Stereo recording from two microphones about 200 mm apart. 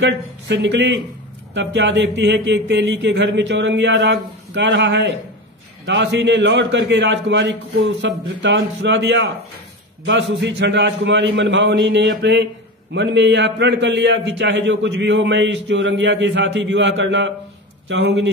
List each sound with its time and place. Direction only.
0.0 s a man's voice: 65° right (ahead or behind)